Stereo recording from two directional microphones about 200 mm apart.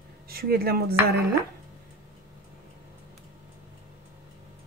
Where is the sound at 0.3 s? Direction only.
50° right (ahead or behind).